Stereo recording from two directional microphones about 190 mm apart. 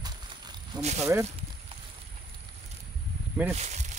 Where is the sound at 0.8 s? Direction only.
35° right (ahead or behind).